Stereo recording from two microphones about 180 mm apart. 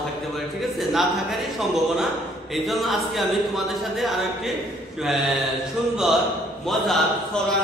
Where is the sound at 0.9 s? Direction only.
Centre (ahead or behind).